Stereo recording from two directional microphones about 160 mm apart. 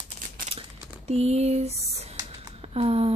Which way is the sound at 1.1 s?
40° right (ahead or behind).